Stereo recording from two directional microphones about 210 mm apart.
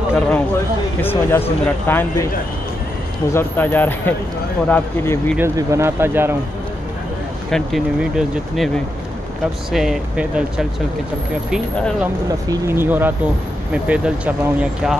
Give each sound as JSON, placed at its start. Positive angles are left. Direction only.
{"t": 1.0, "sound": "speech", "side_deg": 10}
{"t": 3.3, "sound": "speech", "side_deg": 10}
{"t": 5.4, "sound": "speech", "side_deg": -15}
{"t": 7.5, "sound": "speech", "side_deg": 0}